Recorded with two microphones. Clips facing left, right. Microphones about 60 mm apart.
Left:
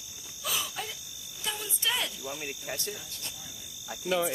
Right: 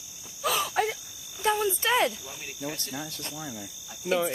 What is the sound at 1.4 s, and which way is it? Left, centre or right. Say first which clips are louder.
Cricket: right 9 dB; right.